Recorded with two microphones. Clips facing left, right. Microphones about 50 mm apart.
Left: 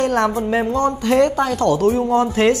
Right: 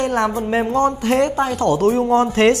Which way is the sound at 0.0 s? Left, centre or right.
Centre.